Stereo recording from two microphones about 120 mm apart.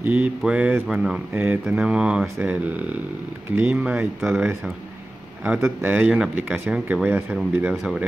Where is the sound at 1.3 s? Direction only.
15° right (ahead or behind).